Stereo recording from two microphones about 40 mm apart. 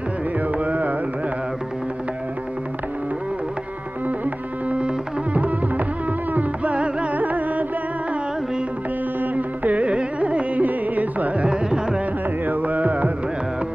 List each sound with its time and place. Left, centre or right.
0.6 s carnatic music: right
4.6 s music: right
7.2 s carnatic music: right
9.2 s carnatic music: right
11.4 s carnatic music: right
12.4 s carnatic music: right